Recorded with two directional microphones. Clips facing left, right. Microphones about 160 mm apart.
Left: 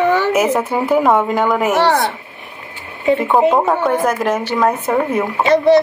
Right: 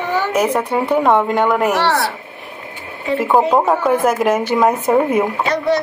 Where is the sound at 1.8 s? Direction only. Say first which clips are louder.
Left 3 dB; 20° left (ahead or behind).